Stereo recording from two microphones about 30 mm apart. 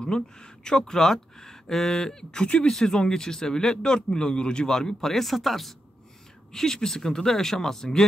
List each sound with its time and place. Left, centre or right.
0.0 s speech: left
4.7 s speech: centre
6.5 s speech: centre